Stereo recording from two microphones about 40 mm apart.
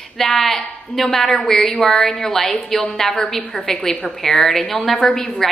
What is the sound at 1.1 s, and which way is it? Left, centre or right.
A woman's voice, centre.